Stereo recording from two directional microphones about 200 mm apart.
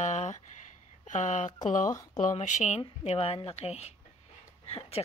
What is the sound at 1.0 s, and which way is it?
A woman's voice, 35° left (ahead or behind).